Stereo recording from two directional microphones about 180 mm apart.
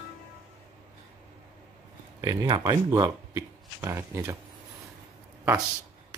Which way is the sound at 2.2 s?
20° right (ahead or behind).